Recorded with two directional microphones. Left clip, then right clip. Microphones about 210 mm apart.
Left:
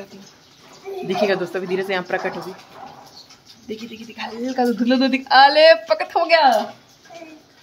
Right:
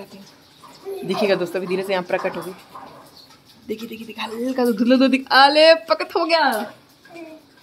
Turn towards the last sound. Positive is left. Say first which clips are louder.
# left 3 dB
turn(degrees=-10)  # may be behind; listen again after turning